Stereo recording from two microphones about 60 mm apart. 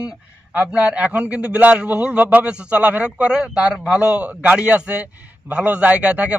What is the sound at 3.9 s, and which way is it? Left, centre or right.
Speech, right.